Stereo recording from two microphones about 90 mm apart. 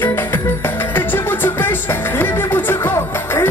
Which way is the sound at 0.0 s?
25° left (ahead or behind).